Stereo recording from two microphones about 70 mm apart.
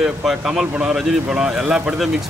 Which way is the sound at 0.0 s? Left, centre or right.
Centre.